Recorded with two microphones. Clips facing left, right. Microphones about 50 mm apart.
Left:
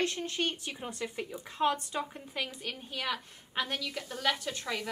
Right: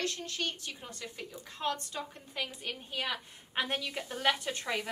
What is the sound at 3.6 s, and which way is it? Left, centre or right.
A woman's voice, right.